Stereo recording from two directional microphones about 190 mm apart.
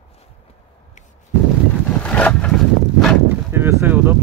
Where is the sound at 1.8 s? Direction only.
5° left (ahead or behind).